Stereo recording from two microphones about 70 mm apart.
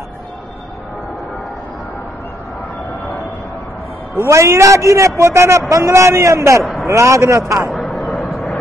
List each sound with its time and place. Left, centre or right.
4.1 s a man's voice: right
6.6 s a sound: centre
6.9 s a man's voice: right
8.2 s vehicle: centre